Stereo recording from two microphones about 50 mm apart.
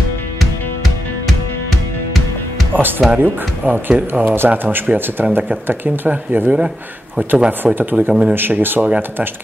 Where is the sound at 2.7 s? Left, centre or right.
Right.